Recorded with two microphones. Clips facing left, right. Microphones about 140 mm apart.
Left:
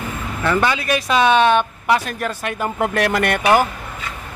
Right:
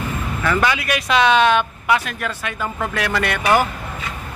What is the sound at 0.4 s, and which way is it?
Speech, 25° left (ahead or behind).